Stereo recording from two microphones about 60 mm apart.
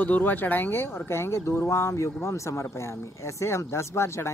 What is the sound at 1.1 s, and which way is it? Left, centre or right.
Speech, left.